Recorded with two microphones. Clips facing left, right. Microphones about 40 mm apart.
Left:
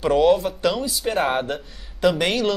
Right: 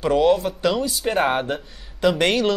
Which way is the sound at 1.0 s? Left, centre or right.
Centre.